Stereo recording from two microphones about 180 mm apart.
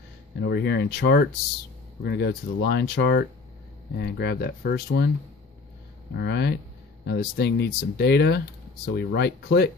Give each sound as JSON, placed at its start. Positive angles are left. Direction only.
{"t": 0.4, "sound": "speech", "side_deg": 70}
{"t": 6.1, "sound": "speech", "side_deg": 65}